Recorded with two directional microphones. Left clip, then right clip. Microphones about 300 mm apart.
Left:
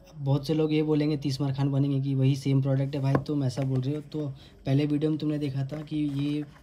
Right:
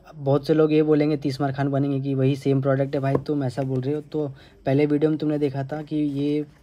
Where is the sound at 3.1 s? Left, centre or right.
Centre.